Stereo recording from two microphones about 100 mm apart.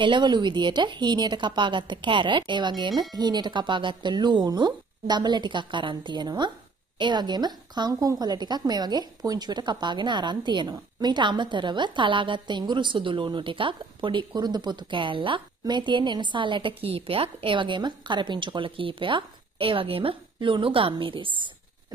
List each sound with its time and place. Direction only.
0.0 s a woman's voice: 50° right (ahead or behind)